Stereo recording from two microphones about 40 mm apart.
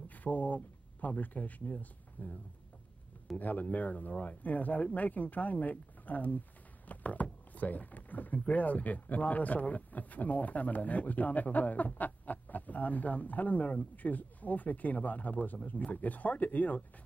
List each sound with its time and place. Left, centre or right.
0.1 s a sound: left
1.0 s speech: left
3.3 s speech: left